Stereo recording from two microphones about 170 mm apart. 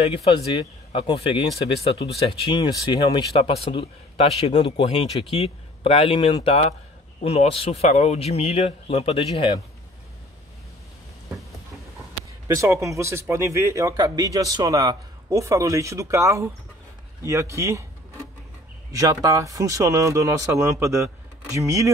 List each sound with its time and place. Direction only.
0.0 s a man's voice: 35° left (ahead or behind)
2.5 s a man's voice: 25° left (ahead or behind)
12.5 s speech: 15° right (ahead or behind)
18.9 s speech: 20° right (ahead or behind)